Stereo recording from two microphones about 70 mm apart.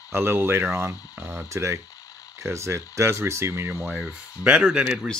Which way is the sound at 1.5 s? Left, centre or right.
Right.